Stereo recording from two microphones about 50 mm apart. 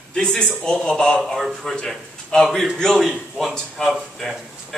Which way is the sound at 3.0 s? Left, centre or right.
Centre.